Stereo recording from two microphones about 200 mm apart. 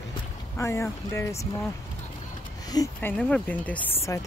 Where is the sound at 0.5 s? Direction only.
15° left (ahead or behind).